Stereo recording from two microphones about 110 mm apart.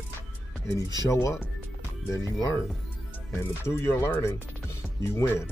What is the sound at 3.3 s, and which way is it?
Speech, 20° left (ahead or behind).